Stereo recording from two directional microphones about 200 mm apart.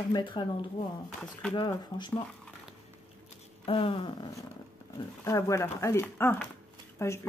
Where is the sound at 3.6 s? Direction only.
25° left (ahead or behind).